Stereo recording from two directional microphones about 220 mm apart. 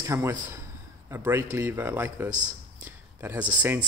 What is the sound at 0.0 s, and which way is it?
A man's voice, 10° right (ahead or behind).